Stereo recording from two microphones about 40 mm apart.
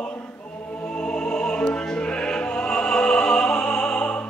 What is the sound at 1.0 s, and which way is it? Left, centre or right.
Music, left.